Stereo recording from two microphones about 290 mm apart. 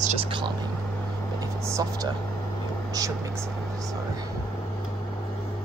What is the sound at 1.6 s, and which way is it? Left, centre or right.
Speech, centre.